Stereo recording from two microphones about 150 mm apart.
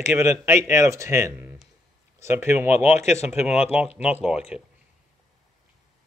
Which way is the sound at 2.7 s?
50° left (ahead or behind).